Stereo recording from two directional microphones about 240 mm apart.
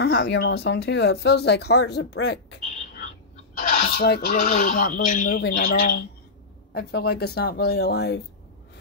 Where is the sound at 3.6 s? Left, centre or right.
Left.